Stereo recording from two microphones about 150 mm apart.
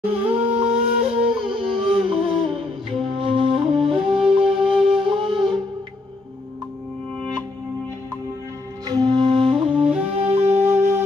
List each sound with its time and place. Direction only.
0.1 s a sound: 10° right (ahead or behind)
0.5 s wind instrument: 10° right (ahead or behind)
1.4 s humming: 40° right (ahead or behind)
2.2 s music: 35° right (ahead or behind)
3.9 s music: 5° right (ahead or behind)
5.0 s music: 35° right (ahead or behind)
8.8 s music: 30° right (ahead or behind)
9.8 s music: 10° right (ahead or behind)